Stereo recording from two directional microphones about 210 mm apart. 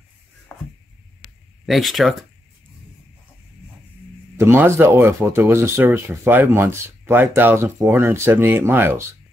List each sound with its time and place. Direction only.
1.7 s speech: centre (ahead or behind)
4.4 s speech: 10° right (ahead or behind)